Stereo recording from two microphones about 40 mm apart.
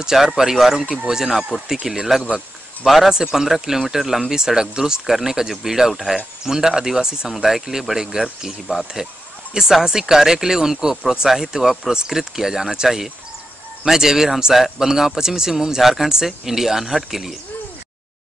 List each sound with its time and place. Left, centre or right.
0.0 s speech: centre
2.2 s speech: centre
11.9 s speech: centre